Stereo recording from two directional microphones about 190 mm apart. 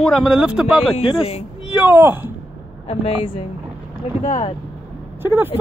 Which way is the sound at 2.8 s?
30° left (ahead or behind).